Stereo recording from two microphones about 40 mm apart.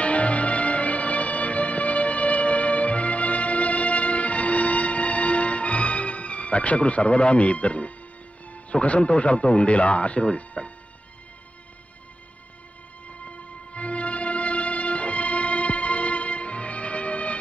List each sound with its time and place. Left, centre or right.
0.0 s music: left
8.5 s speech: left
13.7 s music: left